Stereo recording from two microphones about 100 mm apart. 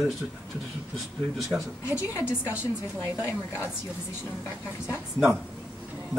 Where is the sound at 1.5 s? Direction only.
5° right (ahead or behind).